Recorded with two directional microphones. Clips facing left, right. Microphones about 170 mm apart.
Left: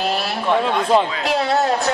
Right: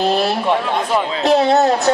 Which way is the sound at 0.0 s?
25° right (ahead or behind).